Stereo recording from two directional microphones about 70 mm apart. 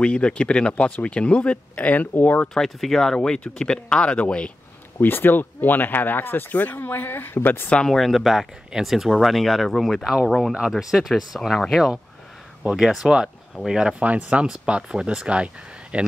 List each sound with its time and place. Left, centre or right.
0.0 s speech: centre
2.5 s speech: centre
5.0 s speech: left
7.7 s speech: centre
12.6 s speech: centre